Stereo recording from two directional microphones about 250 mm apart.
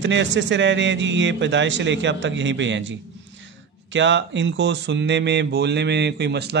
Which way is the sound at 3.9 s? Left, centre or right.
Right.